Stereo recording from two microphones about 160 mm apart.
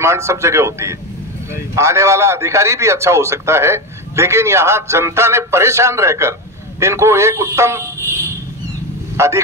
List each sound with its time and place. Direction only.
0.0 s a man's voice: 15° right (ahead or behind)
9.1 s speech: 15° right (ahead or behind)